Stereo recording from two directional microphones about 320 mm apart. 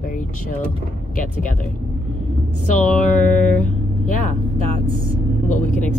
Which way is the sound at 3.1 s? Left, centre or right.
Left.